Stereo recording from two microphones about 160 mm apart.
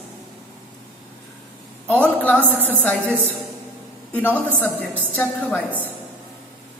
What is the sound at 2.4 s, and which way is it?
Speech, 10° right (ahead or behind).